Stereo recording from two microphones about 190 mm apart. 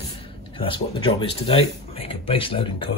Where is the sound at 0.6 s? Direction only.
25° left (ahead or behind).